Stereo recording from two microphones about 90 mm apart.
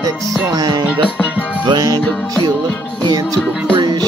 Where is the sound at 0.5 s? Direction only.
55° right (ahead or behind).